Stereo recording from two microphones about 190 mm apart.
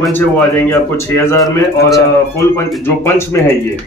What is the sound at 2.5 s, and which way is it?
Speech, 15° left (ahead or behind).